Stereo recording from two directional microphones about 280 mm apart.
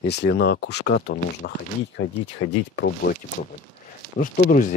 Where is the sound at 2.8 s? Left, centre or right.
Left.